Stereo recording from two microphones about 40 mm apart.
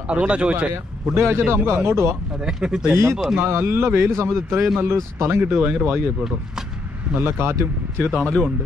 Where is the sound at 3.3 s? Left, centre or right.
Right.